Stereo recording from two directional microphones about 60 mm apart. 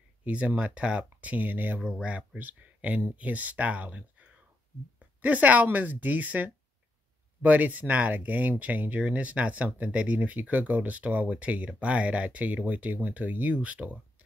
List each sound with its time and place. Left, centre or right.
0.2 s speech: right
1.8 s speech: centre